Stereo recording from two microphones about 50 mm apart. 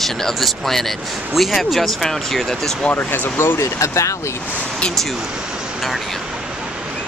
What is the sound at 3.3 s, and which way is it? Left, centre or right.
Speech, left.